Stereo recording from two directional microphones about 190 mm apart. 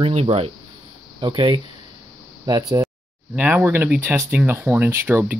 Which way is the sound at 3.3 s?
10° right (ahead or behind).